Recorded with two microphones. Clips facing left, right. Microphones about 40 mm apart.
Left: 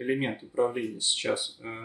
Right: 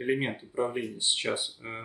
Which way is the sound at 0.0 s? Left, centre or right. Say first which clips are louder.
Even; centre.